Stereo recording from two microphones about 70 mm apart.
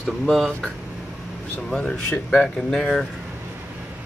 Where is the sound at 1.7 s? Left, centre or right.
Centre.